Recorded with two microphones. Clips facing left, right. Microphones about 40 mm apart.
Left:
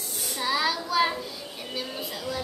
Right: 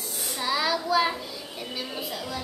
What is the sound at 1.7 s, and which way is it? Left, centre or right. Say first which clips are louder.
Speech: even; centre.